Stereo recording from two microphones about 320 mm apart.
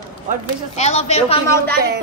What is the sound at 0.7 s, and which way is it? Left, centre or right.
Speech, left.